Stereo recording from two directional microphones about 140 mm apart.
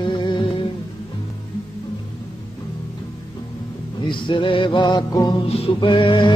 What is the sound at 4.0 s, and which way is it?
Music, 35° left (ahead or behind).